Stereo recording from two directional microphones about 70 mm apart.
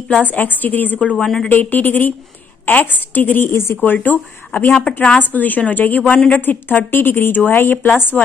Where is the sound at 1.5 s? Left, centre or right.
Left.